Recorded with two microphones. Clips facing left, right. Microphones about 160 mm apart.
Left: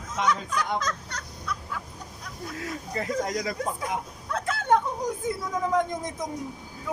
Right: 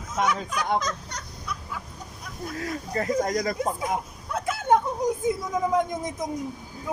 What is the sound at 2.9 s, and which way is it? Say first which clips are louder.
Speech: right 4 dB; 45° right (ahead or behind).